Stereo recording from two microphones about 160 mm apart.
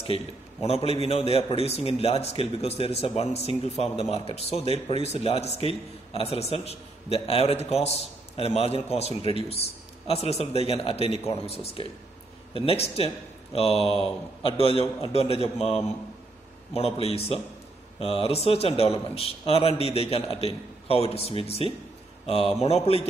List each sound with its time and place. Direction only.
0.0 s a man's voice: 40° left (ahead or behind)